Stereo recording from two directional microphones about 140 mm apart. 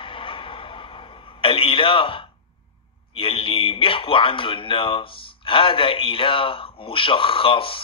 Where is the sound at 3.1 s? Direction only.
40° left (ahead or behind).